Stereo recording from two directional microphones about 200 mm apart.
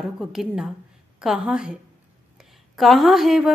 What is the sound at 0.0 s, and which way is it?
A woman's voice, centre (ahead or behind).